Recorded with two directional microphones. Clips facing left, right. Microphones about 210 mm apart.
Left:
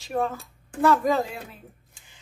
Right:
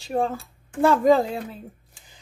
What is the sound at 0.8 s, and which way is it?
Speech, 30° right (ahead or behind).